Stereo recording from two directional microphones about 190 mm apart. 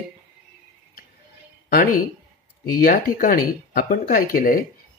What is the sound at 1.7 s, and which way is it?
Speech, 50° left (ahead or behind).